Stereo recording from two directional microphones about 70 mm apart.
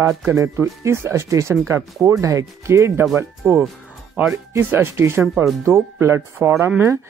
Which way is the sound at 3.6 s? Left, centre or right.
Centre.